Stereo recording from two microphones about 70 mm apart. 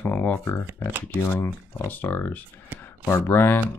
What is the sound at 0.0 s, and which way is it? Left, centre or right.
Shuffling cards, left.